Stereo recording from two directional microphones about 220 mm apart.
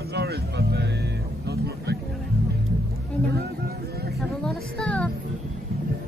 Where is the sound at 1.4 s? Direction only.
50° right (ahead or behind).